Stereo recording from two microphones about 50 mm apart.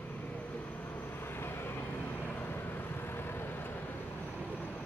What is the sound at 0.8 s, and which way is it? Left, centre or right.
Vehicle, left.